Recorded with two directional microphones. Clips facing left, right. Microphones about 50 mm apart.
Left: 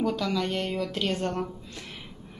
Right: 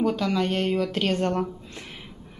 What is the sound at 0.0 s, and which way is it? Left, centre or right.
Speech, right.